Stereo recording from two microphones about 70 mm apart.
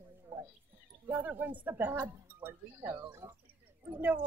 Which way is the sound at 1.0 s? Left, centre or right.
Right.